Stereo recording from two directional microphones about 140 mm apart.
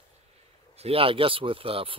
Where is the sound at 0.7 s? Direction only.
45° right (ahead or behind).